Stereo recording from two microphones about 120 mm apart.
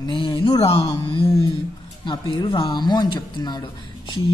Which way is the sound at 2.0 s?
40° left (ahead or behind).